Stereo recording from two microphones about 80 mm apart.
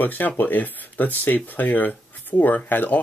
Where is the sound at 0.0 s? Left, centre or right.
Left.